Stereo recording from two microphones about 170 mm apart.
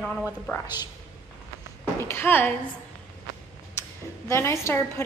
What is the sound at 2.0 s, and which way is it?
Speech, 15° left (ahead or behind).